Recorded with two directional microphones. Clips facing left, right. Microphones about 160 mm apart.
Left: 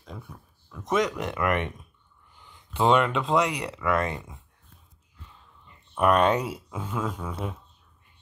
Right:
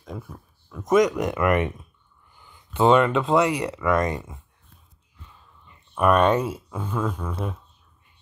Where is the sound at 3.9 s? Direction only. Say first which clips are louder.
Right 3 dB; 40° right (ahead or behind).